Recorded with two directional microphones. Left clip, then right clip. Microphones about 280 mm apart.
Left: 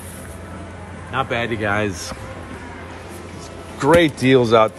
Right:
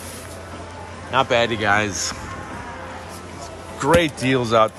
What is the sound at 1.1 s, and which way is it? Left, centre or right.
Speech, centre.